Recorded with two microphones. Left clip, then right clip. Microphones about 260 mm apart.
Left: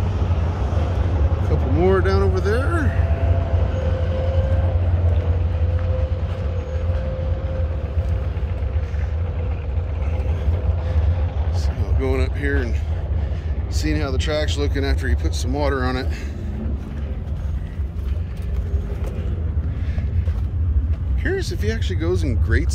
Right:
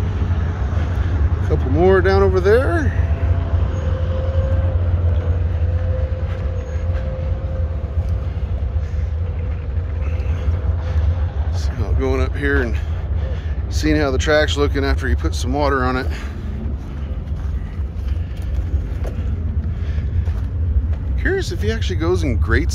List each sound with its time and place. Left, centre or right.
0.0 s vehicle: left
1.8 s speech: centre
3.5 s vehicle: left
11.8 s a sound: centre
13.7 s speech: centre
21.2 s speech: centre